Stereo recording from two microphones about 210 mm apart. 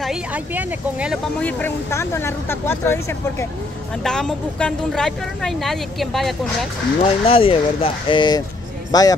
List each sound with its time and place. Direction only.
0.0 s speech: 5° right (ahead or behind)
1.4 s speech: 10° left (ahead or behind)
7.0 s speech: 25° left (ahead or behind)